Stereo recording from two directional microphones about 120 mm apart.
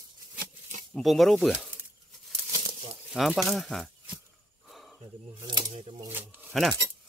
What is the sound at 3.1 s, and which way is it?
Speech, centre (ahead or behind).